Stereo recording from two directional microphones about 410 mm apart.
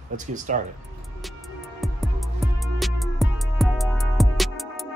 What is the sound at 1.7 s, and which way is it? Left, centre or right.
Music, centre.